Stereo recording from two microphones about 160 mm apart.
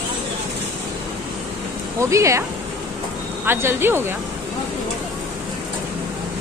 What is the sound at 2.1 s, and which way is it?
Speech, 20° right (ahead or behind).